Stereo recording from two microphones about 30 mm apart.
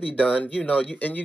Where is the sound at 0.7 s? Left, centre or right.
Left.